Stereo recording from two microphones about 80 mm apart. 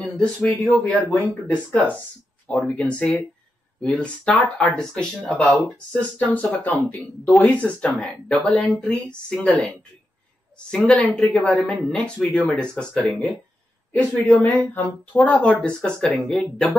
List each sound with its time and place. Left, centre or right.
0.0 s speech: centre
5.9 s speech: centre
10.7 s speech: centre
13.9 s speech: centre